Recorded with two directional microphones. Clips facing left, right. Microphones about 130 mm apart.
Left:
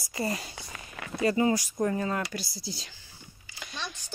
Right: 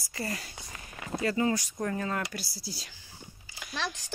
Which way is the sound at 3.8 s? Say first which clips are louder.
Right 4 dB; 90° right.